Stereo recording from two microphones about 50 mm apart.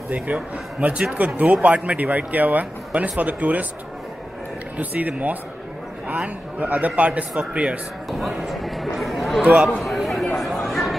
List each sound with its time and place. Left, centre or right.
0.1 s a man's voice: right
4.7 s a man's voice: right
8.1 s speech: centre
9.4 s a man's voice: right
9.8 s a sound: centre
10.6 s chatter: centre